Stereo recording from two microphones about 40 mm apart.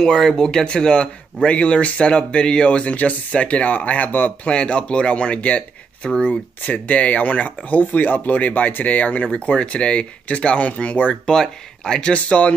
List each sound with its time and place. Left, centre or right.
0.0 s speech: centre; by 4.3 s left
4.5 s speech: left
6.0 s speech: left
6.6 s speech: left
11.2 s speech: centre
12.1 s speech: left